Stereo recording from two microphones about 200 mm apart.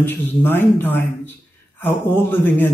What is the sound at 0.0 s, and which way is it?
Speech, 10° left (ahead or behind).